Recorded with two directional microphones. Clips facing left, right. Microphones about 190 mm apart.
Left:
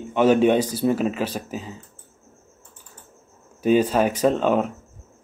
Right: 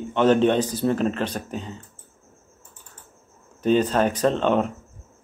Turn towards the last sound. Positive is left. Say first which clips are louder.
# left 1 dB
turn(degrees=5)  # may be behind; listen again after turning